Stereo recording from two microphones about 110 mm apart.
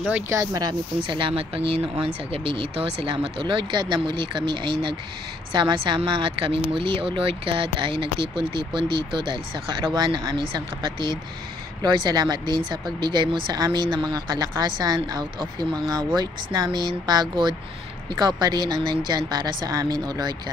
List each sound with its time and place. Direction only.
0.3 s a woman's voice: 30° right (ahead or behind)
16.2 s a woman's voice: 40° right (ahead or behind)